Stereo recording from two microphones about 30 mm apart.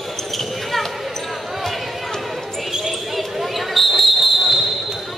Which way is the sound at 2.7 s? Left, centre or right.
Centre.